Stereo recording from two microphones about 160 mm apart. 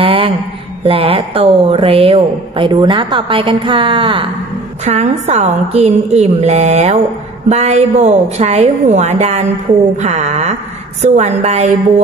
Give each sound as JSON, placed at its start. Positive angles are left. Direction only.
{"t": 0.0, "sound": "a sound", "side_deg": -35}
{"t": 0.8, "sound": "a woman's voice", "side_deg": -35}
{"t": 4.8, "sound": "a woman's voice", "side_deg": -40}